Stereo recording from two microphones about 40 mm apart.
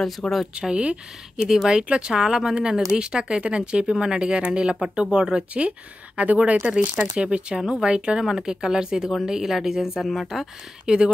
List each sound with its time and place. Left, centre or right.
0.2 s speech: centre
0.6 s speech: right
1.4 s speech: centre
1.7 s speech: right
6.1 s speech: right; by 10.0 s centre
10.0 s speech: centre
10.4 s speech: centre